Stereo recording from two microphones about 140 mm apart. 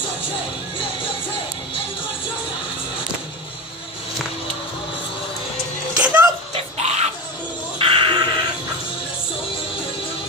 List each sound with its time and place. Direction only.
5.9 s music: 10° right (ahead or behind)
6.5 s dog: 50° right (ahead or behind)
7.8 s a sound: 40° right (ahead or behind)